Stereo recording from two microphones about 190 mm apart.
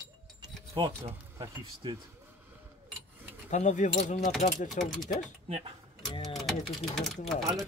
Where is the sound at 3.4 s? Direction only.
40° left (ahead or behind).